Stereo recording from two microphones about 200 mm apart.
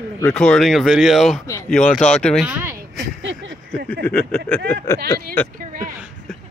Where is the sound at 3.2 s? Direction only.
65° right (ahead or behind).